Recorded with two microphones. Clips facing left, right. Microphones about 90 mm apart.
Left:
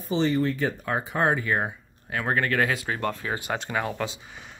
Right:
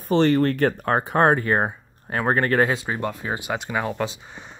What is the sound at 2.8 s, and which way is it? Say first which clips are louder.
Speech: right 2 dB; 15° right (ahead or behind).